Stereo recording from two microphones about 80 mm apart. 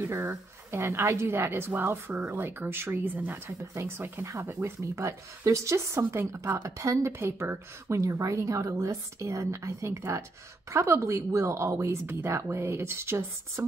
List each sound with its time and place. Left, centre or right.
0.0 s a woman's voice: right
6.4 s speech: right